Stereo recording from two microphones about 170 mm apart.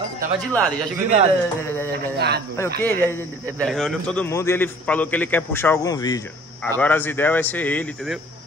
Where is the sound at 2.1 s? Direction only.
70° right (ahead or behind).